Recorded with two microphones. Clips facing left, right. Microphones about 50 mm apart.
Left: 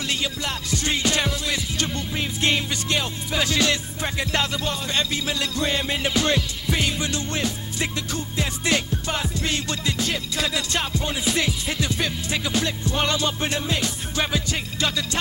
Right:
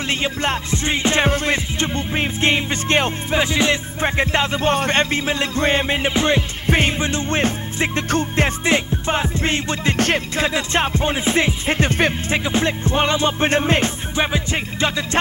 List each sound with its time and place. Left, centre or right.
0.1 s music: right
3.4 s music: right
8.6 s music: right
9.9 s music: right
10.3 s music: right
14.1 s music: right